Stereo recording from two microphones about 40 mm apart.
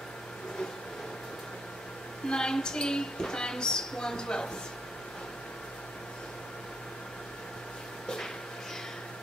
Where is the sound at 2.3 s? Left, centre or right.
Centre.